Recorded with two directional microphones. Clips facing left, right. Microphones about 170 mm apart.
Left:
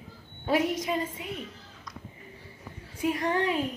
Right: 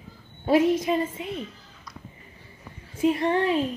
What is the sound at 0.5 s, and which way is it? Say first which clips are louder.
Speech: right 6 dB; 30° right (ahead or behind).